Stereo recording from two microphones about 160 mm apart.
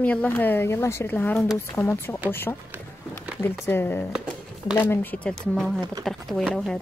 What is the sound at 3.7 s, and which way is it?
Speech, 15° left (ahead or behind).